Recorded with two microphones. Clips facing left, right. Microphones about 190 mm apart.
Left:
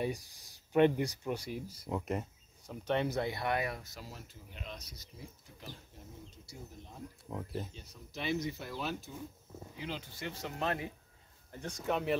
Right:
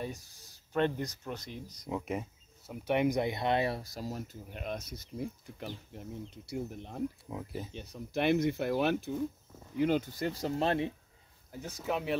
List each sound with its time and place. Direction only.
0.0 s speech: 15° left (ahead or behind); by 7.0 s 65° right (ahead or behind)
7.2 s speech: centre (ahead or behind)
7.7 s speech: 60° right (ahead or behind)
9.8 s speech: 50° right (ahead or behind); by 10.9 s 30° right (ahead or behind)
11.5 s speech: 5° right (ahead or behind)